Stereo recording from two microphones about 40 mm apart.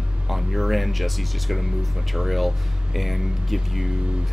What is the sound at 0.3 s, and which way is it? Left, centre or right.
Speech, centre.